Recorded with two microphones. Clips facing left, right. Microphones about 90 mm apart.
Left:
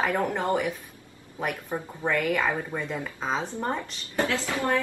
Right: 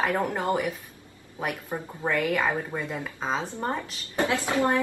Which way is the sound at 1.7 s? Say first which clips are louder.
Even; 5° right (ahead or behind).